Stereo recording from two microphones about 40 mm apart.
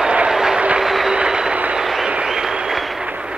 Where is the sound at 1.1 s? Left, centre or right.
Centre.